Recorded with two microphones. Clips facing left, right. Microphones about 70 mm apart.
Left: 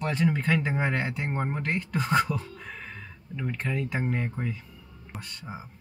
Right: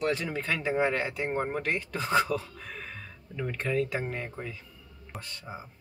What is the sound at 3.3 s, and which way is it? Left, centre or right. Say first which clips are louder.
Speech: right 2 dB; centre.